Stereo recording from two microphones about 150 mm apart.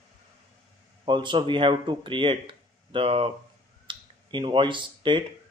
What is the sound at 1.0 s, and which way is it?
Speech, 30° right (ahead or behind).